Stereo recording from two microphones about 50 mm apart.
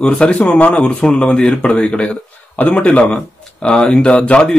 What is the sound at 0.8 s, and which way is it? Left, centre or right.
Speech, centre.